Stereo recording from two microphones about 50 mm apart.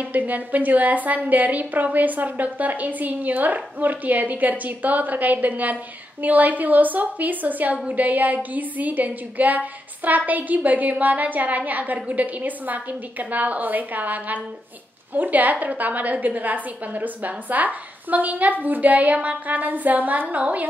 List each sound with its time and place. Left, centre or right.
0.0 s a woman's voice: right